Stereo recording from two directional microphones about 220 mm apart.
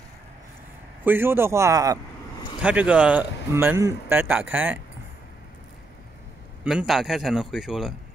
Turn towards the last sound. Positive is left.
turn(degrees=0)  # may be behind; listen again after turning